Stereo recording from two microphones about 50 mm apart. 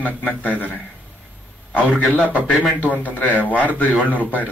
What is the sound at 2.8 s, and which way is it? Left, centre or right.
Speech, left.